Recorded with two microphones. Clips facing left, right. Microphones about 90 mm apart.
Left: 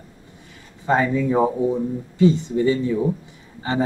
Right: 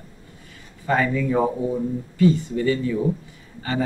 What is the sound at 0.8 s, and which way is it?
Speech, 20° left (ahead or behind).